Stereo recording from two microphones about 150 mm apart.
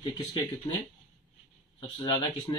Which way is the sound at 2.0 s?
25° left (ahead or behind).